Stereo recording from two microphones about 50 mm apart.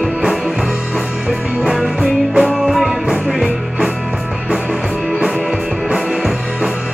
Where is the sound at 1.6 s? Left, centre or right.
Centre.